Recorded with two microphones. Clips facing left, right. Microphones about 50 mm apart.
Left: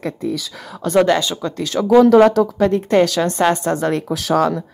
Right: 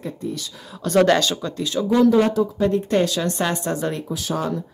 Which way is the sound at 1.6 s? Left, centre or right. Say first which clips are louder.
Left 6 dB; left.